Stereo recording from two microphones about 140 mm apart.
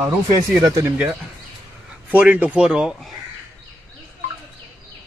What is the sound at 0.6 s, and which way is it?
Speech, 25° right (ahead or behind).